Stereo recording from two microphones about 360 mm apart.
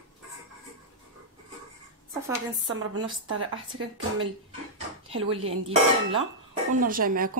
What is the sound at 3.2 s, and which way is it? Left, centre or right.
A woman's voice, right.